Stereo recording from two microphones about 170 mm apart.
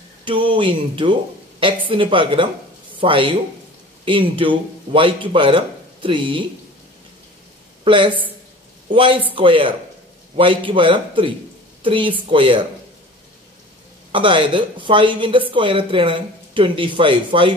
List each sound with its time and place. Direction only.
0.2 s speech: 30° right (ahead or behind)
7.8 s a woman's voice: 30° right (ahead or behind)
14.1 s speech: 30° right (ahead or behind)